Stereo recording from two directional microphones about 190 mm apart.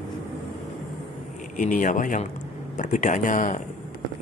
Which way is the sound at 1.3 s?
40° left (ahead or behind).